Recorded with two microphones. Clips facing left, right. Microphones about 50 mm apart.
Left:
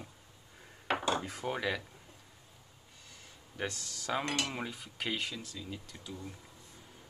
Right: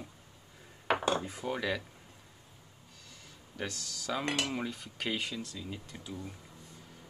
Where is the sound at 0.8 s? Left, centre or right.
Centre.